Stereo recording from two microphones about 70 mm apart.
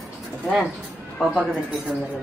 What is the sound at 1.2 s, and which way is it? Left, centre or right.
Speech, centre.